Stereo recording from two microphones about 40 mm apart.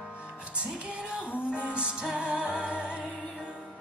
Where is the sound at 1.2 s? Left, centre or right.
Left.